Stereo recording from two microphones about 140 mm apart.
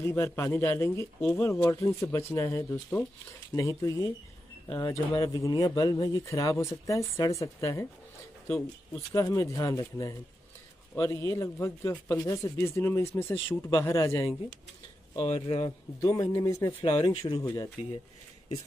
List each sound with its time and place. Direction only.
0.0 s speech: 20° left (ahead or behind)
8.5 s speech: 5° left (ahead or behind)
9.1 s speech: 25° left (ahead or behind)
15.1 s speech: 40° left (ahead or behind)
15.6 s speech: 25° left (ahead or behind)
17.1 s speech: 40° left (ahead or behind)